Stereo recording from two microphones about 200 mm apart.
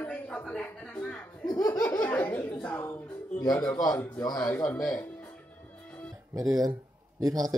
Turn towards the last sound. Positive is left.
turn(degrees=-20)  # may be behind; listen again after turning